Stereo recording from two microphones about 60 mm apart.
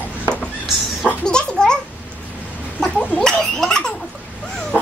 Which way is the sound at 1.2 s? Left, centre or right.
Centre.